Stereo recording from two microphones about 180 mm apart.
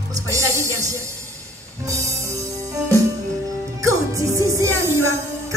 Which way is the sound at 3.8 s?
15° right (ahead or behind).